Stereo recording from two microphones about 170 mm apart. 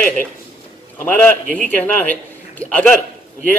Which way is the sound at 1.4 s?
50° right (ahead or behind).